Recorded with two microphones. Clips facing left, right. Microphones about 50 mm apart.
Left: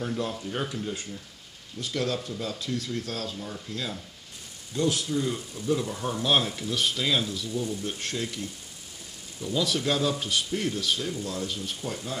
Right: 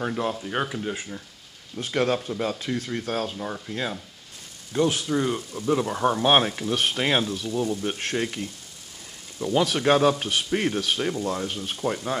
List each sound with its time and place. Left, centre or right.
0.0 s speech: right
1.8 s speech: right